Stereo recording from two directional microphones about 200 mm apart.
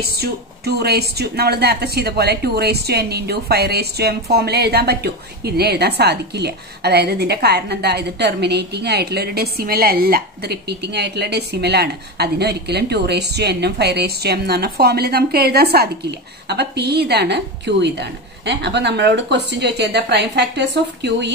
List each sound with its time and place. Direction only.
0.2 s a woman's voice: 55° right (ahead or behind)